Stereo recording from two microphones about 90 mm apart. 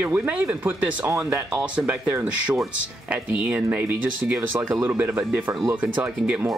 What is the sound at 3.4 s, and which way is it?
Speech, 15° right (ahead or behind).